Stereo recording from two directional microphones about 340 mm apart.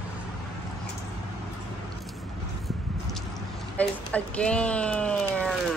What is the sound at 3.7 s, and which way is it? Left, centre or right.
Speech, centre.